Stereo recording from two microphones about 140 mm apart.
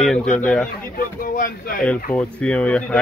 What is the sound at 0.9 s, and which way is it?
Speech, 75° left (ahead or behind).